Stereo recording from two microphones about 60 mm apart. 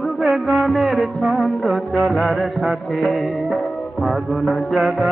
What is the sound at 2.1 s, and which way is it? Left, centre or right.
Music, centre.